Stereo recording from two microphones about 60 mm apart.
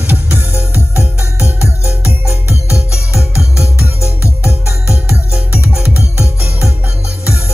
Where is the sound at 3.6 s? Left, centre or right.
Left.